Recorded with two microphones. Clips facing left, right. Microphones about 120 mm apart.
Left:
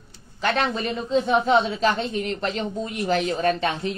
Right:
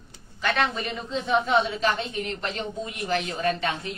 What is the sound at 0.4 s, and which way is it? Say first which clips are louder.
Speech: left 2 dB; 35° left (ahead or behind).